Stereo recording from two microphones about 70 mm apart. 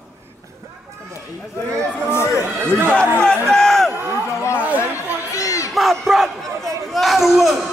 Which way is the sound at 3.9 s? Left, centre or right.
Right.